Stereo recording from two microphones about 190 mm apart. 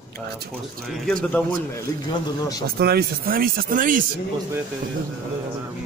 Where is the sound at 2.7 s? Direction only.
55° right (ahead or behind).